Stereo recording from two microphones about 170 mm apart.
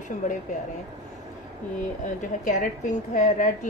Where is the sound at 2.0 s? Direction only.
50° left (ahead or behind).